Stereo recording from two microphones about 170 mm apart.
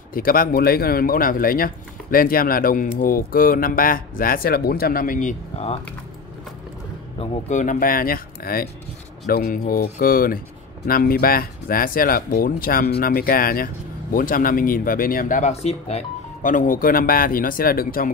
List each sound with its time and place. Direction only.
0.1 s speech: 60° left (ahead or behind)
7.2 s speech: 45° left (ahead or behind)
16.4 s speech: 50° left (ahead or behind)